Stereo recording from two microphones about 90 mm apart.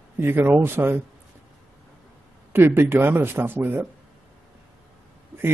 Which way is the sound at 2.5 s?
25° right (ahead or behind).